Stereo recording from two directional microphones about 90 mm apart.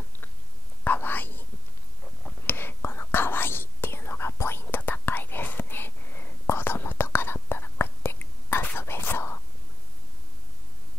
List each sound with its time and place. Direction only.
0.8 s whispering: 20° left (ahead or behind)
2.4 s whispering: 25° left (ahead or behind)